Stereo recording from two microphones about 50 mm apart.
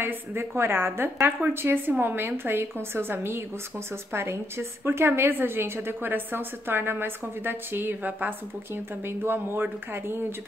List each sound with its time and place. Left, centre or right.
0.0 s a woman's voice: right
9.0 s a woman's voice: right